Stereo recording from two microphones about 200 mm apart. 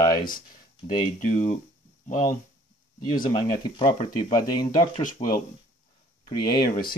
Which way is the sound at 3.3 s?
25° left (ahead or behind).